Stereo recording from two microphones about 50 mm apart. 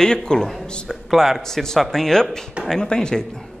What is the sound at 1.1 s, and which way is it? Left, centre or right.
A man's voice, centre.